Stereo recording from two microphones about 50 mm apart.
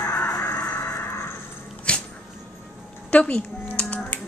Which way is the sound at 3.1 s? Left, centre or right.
Left.